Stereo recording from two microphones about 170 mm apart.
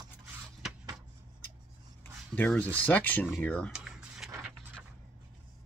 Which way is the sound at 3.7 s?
5° right (ahead or behind).